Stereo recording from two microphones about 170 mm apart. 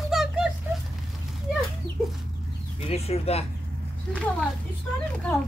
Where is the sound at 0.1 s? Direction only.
Centre (ahead or behind).